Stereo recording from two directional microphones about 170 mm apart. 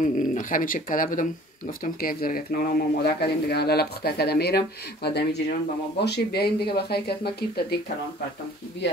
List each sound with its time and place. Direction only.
0.0 s speech: 50° left (ahead or behind); by 7.6 s 70° left (ahead or behind)